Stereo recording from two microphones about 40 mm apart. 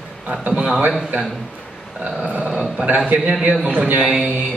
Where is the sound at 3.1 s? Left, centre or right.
Right.